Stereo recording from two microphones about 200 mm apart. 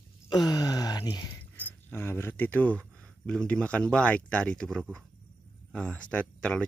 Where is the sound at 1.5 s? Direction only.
10° left (ahead or behind).